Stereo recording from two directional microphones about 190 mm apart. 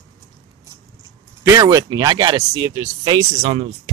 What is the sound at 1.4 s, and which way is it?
Speech, 20° right (ahead or behind).